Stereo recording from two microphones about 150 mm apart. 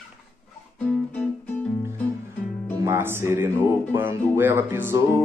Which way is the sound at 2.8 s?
15° right (ahead or behind).